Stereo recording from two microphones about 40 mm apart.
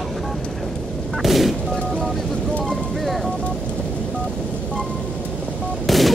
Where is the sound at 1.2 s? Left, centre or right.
Centre.